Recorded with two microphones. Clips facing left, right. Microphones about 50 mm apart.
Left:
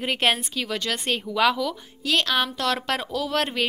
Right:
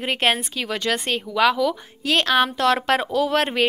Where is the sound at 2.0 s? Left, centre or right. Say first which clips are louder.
Right 4 dB; right.